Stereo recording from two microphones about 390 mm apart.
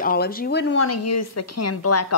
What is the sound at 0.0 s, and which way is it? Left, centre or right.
A woman's voice, left.